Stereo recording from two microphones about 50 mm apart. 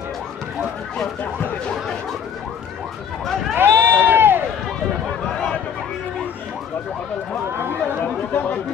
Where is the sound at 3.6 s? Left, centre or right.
Right.